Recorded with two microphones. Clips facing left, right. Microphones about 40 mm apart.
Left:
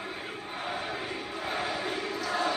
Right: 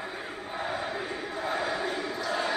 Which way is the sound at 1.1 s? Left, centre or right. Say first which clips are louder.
Right 2 dB; left.